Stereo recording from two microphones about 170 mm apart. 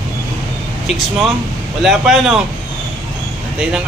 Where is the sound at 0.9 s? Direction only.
40° left (ahead or behind).